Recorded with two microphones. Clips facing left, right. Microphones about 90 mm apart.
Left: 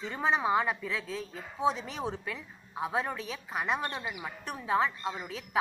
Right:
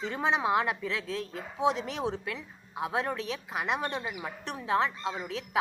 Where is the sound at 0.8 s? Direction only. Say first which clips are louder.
Right 2 dB; 10° left (ahead or behind).